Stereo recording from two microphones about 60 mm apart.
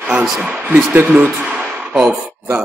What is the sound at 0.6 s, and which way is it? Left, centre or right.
Speech, right.